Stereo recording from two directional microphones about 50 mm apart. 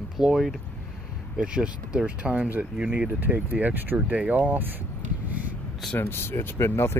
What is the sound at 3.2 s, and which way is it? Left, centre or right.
Speech, right.